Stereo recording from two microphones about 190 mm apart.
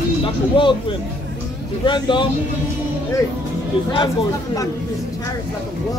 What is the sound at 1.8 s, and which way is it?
Speech, 25° left (ahead or behind).